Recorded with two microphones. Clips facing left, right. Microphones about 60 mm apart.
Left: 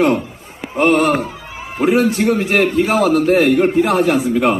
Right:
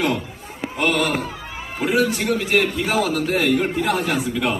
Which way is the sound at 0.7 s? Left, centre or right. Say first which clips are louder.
Left 7 dB; left.